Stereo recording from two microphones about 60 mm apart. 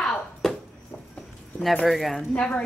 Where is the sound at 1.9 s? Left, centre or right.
Centre.